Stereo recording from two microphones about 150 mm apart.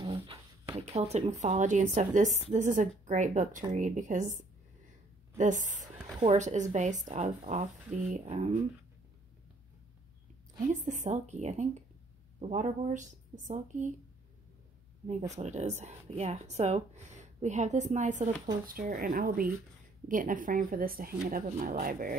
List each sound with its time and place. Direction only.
0.0 s a sound: 35° right (ahead or behind)
0.7 s speech: 45° right (ahead or behind)
5.4 s speech: 55° right (ahead or behind)
10.7 s speech: 55° right (ahead or behind)
15.3 s speech: 50° right (ahead or behind)
18.7 s speech: 70° right (ahead or behind)
20.1 s speech: 65° right (ahead or behind)